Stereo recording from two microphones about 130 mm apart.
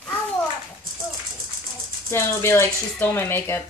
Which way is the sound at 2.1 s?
20° left (ahead or behind).